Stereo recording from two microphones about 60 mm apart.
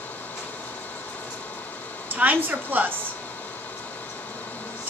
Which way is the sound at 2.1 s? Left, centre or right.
Right.